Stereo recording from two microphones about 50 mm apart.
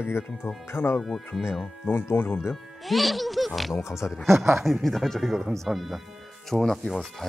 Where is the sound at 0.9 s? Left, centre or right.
Centre.